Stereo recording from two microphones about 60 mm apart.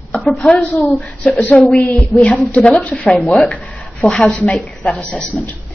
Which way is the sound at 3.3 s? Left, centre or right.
Centre.